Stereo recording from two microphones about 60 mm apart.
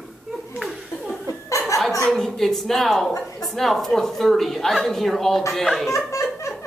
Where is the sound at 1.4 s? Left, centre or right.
Left.